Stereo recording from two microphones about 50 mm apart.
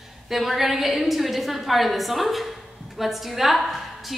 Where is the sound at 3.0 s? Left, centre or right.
Centre.